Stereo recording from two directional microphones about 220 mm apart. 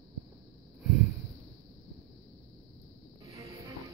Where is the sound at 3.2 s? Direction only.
15° right (ahead or behind).